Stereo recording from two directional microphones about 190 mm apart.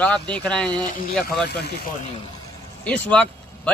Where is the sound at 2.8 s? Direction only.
5° left (ahead or behind).